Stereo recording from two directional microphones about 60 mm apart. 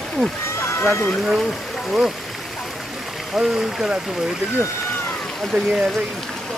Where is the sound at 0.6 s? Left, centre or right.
Left.